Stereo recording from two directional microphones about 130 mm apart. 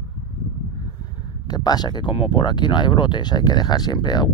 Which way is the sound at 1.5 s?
30° left (ahead or behind).